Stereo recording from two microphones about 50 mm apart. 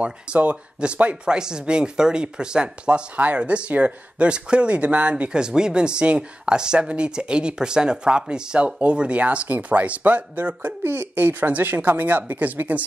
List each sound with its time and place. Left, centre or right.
0.3 s speech: right
3.2 s speech: right
10.8 s speech: right